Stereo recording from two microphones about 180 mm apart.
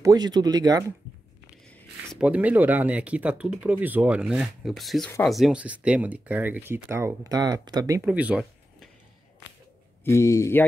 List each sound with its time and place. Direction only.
0.0 s speech: 20° right (ahead or behind)
2.1 s speech: 5° right (ahead or behind)
8.1 s speech: 5° right (ahead or behind)
10.0 s speech: 15° left (ahead or behind)